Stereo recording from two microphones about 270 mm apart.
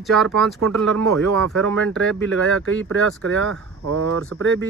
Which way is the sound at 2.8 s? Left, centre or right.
Right.